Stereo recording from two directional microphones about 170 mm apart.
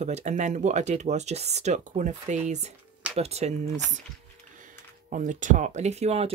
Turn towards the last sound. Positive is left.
turn(degrees=-40)  # may be behind; listen again after turning